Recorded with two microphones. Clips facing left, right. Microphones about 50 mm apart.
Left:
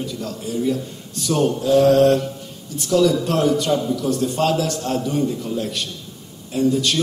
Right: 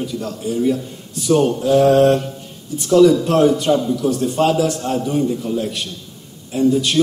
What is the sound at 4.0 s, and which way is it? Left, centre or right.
Speech, right.